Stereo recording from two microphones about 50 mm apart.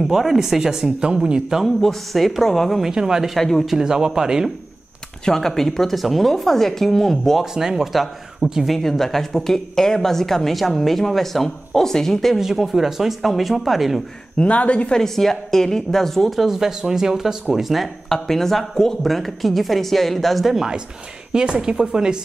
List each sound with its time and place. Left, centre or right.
0.1 s speech: centre
1.8 s speech: centre
2.8 s speech: centre
3.3 s speech: centre
3.6 s speech: centre
5.2 s speech: centre
7.5 s speech: centre
12.4 s speech: centre
14.4 s a woman's voice: left
15.0 s speech: centre
21.3 s speech: centre